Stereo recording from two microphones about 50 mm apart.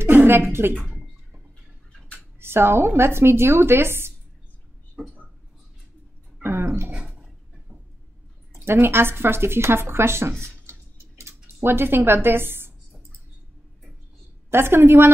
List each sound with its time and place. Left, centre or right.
0.0 s a woman's voice: right
2.4 s speech: right
6.5 s dog: right
6.9 s a sound: centre
8.7 s speech: right
10.4 s tick-tock: right
11.6 s speech: right
14.5 s speech: right